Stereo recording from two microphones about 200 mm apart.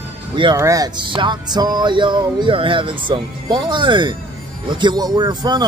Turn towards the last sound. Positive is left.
turn(degrees=-20)  # may be behind; listen again after turning